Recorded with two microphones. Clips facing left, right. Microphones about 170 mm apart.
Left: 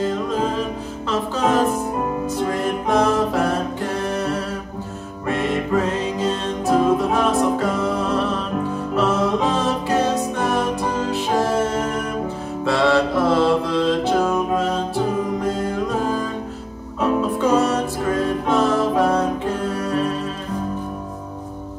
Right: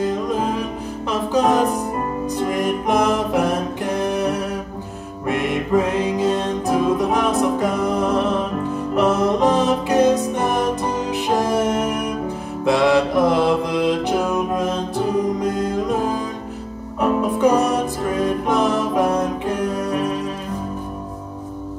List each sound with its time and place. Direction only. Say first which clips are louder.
0.0 s music: right 1 dB; 15° right (ahead or behind)
12.6 s mantra: right 2 dB; 15° right (ahead or behind)
17.0 s music: right 2 dB; 15° right (ahead or behind)